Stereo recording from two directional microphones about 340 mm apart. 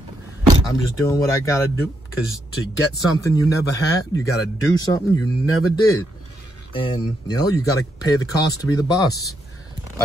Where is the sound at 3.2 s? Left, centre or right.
Centre.